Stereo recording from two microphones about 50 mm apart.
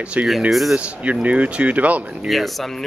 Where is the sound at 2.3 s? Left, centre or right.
Centre.